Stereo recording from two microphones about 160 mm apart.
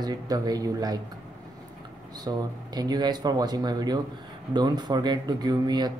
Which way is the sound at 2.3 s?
25° right (ahead or behind).